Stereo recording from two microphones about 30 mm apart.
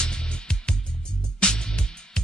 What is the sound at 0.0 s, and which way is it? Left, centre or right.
Music, left.